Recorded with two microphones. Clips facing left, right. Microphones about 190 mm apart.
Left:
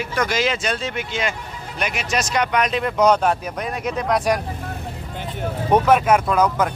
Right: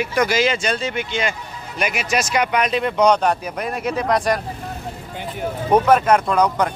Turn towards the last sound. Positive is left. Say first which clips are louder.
# right 1 dB
turn(degrees=5)  # may be behind; listen again after turning